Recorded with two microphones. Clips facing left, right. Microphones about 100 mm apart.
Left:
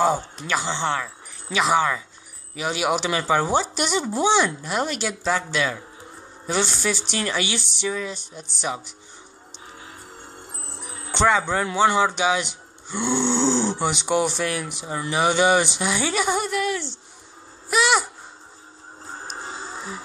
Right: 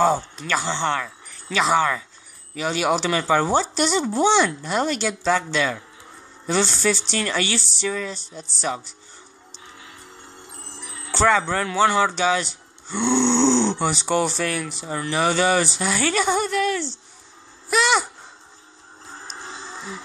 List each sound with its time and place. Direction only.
0.0 s speech: 10° left (ahead or behind)
10.8 s music: 35° left (ahead or behind)
11.1 s speech: 15° left (ahead or behind)
19.1 s music: 45° left (ahead or behind)
19.7 s music: 10° left (ahead or behind)